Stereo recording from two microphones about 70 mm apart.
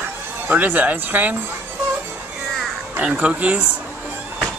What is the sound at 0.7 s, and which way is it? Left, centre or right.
Speech, right.